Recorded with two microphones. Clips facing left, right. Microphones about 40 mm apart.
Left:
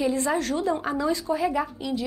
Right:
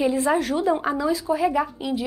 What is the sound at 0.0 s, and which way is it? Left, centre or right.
Speech, centre.